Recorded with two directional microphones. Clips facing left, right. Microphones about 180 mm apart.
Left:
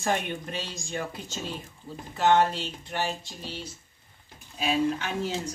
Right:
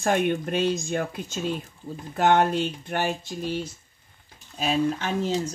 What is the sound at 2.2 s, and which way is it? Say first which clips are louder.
Speech: right 2 dB; 55° right (ahead or behind).